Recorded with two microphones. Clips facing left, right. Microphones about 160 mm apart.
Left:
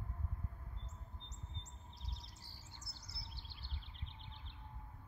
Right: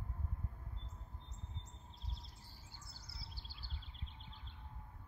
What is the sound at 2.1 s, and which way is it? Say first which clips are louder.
Chirp: right 2 dB; 80° left.